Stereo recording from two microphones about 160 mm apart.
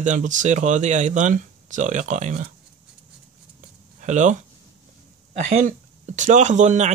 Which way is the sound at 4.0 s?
50° right (ahead or behind).